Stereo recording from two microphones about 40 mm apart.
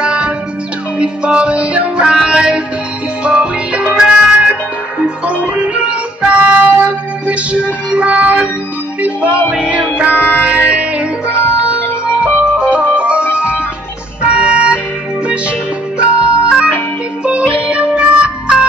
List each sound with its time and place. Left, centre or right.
0.0 s music: right
2.0 s music: right
14.2 s music: right
16.0 s music: right